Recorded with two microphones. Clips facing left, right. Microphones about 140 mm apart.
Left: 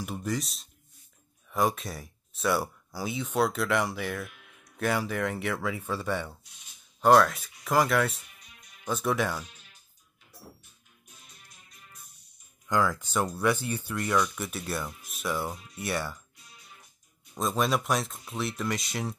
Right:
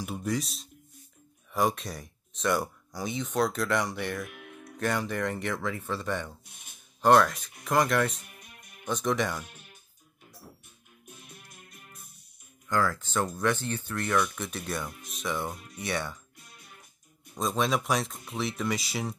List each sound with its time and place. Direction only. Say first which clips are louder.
0.0 s speech: right 1 dB; centre (ahead or behind)
4.3 s music: right 11 dB; 60° right (ahead or behind)
4.7 s speech: left 1 dB; 5° left (ahead or behind)
6.4 s a sound: right 4 dB; 55° right (ahead or behind)
7.0 s speech: left 1 dB; centre (ahead or behind)
8.2 s music: right 4 dB; 55° right (ahead or behind)
8.8 s speech: even; 5° left (ahead or behind)
9.4 s music: right 1 dB; 55° right (ahead or behind)
11.1 s music: right 7 dB; 55° right (ahead or behind)
12.6 s speech: left 1 dB; 15° left (ahead or behind)
16.3 s music: right 2 dB; 55° right (ahead or behind)
17.4 s speech: even; centre (ahead or behind)